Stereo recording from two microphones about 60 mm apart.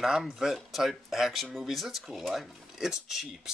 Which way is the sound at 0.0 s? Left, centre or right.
Centre.